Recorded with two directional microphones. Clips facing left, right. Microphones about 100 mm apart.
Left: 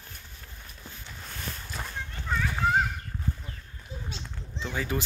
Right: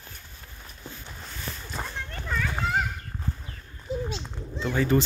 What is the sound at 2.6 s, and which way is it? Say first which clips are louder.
Children playing: left 4 dB; 90° right.